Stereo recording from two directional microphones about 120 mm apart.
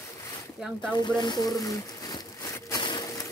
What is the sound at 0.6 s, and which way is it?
Speech, 5° right (ahead or behind).